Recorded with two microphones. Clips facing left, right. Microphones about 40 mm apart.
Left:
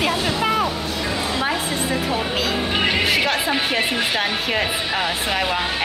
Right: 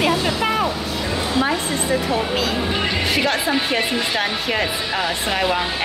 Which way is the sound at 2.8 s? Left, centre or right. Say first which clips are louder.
Left 2 dB; centre.